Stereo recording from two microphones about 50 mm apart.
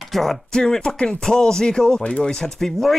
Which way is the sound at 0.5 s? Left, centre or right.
Centre.